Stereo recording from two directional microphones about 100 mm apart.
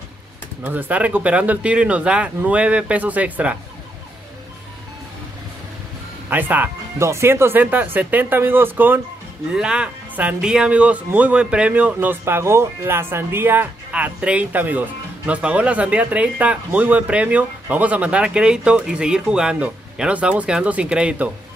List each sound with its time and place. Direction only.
0.7 s speech: 20° right (ahead or behind)
6.3 s speech: 20° right (ahead or behind)
9.5 s speech: 10° right (ahead or behind)